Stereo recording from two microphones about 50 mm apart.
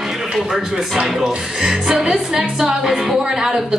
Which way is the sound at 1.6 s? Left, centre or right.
Centre.